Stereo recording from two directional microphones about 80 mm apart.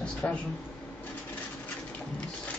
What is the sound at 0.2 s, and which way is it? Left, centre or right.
Speech, centre.